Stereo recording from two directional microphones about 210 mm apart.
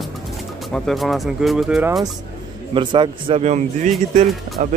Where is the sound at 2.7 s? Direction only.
20° right (ahead or behind).